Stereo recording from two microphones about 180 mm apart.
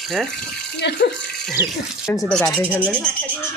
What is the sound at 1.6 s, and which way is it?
Speech, 15° right (ahead or behind).